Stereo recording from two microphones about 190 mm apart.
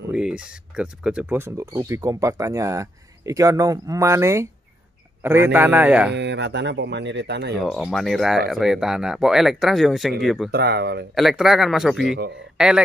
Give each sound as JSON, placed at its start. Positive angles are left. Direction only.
{"t": 0.1, "sound": "speech", "side_deg": -5}
{"t": 6.1, "sound": "speech", "side_deg": -65}
{"t": 7.6, "sound": "speech", "side_deg": 0}
{"t": 10.5, "sound": "speech", "side_deg": -60}
{"t": 11.1, "sound": "speech", "side_deg": 0}